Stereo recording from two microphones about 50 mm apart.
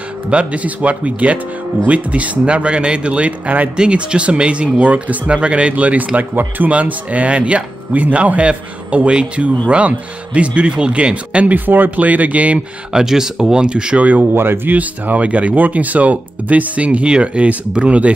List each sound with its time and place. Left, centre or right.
0.3 s speech: right
3.7 s speech: centre
11.5 s speech: right
12.9 s speech: centre
13.9 s speech: right
14.3 s speech: right
14.8 s speech: right